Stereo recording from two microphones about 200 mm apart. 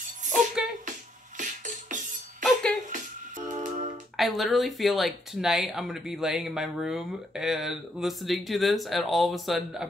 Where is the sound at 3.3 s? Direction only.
35° right (ahead or behind).